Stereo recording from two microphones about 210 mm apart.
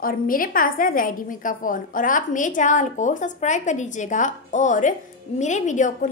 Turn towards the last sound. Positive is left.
turn(degrees=35)  # may be behind; listen again after turning